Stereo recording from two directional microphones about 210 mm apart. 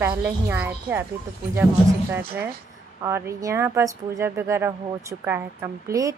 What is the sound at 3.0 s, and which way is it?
A woman's voice, 15° right (ahead or behind).